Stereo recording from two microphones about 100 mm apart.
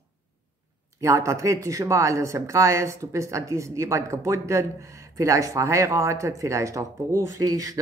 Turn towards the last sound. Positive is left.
turn(degrees=-35)  # may be behind; listen again after turning